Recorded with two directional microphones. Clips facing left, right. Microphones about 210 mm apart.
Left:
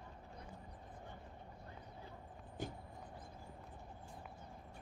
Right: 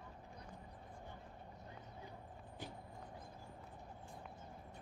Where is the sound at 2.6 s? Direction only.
45° left (ahead or behind).